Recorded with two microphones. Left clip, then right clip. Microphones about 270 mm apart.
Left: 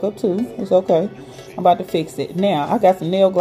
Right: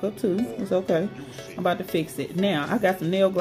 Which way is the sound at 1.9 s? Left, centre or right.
Centre.